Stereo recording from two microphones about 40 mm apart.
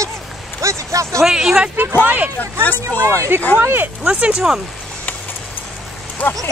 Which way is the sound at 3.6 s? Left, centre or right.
Right.